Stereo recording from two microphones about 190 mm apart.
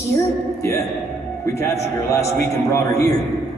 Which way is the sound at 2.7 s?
15° left (ahead or behind).